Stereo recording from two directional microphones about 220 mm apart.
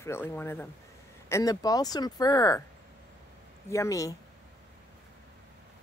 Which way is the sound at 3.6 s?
15° left (ahead or behind).